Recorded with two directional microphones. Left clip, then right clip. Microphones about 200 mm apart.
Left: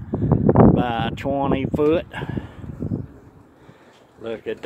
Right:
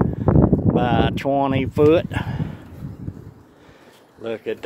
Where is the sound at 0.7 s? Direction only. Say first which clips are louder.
Right 3 dB; 5° right (ahead or behind).